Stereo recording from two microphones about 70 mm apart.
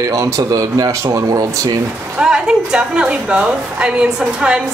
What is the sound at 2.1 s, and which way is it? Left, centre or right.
A woman's voice, centre.